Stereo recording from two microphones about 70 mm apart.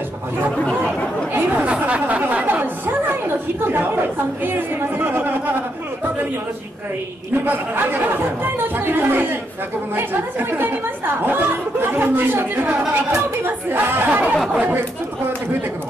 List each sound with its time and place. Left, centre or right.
0.8 s speech: right
7.4 s speech: right